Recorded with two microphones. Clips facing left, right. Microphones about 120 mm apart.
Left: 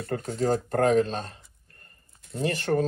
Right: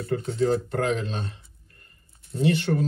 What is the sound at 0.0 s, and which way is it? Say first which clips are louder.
Speech: right 3 dB; 60° left (ahead or behind).